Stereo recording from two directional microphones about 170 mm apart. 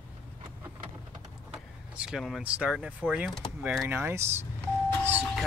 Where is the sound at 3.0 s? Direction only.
Centre (ahead or behind).